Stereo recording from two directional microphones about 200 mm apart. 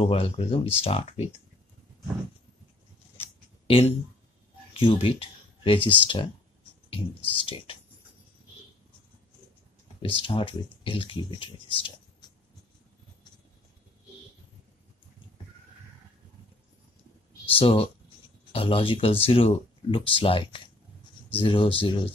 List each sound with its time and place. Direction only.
0.0 s speech: 30° left (ahead or behind)
4.7 s speech: 25° left (ahead or behind)
10.0 s speech: 25° left (ahead or behind)
17.5 s speech: 30° left (ahead or behind)